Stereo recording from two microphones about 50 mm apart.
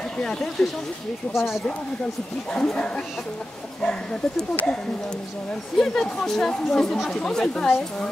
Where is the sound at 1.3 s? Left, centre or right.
Centre.